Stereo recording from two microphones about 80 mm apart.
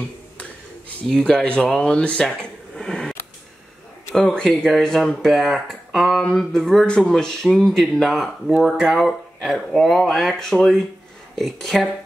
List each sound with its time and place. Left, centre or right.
1.0 s speech: centre
4.4 s speech: centre